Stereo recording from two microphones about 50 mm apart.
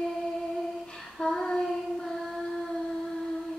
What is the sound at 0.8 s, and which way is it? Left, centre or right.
Child singing, centre.